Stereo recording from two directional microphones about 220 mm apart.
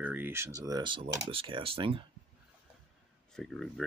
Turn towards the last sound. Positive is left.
turn(degrees=0)  # may be behind; listen again after turning